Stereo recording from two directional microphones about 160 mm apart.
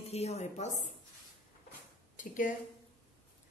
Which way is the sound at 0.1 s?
40° left (ahead or behind).